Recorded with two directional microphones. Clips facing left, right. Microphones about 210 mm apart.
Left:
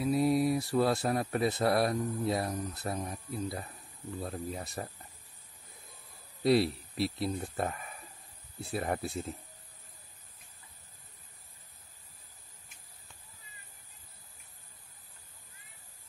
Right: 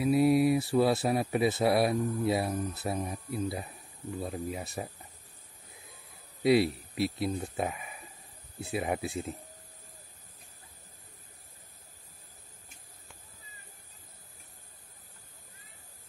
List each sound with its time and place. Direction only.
0.0 s speech: 5° right (ahead or behind)
6.4 s speech: centre (ahead or behind)